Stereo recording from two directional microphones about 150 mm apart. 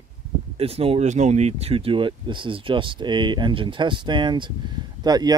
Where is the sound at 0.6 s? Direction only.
40° right (ahead or behind).